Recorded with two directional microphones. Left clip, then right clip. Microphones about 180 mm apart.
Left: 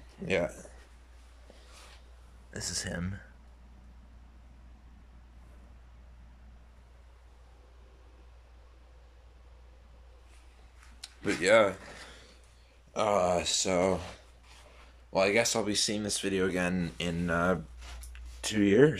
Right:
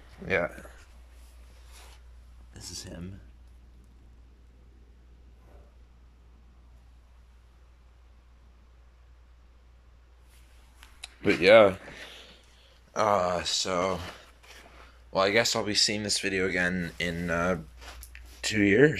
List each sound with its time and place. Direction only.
0.2 s speech: 20° left (ahead or behind)
2.5 s speech: 55° left (ahead or behind)
11.2 s speech: centre (ahead or behind); by 14.0 s 20° left (ahead or behind)
14.4 s a sound: 60° right (ahead or behind)
15.1 s speech: 10° left (ahead or behind)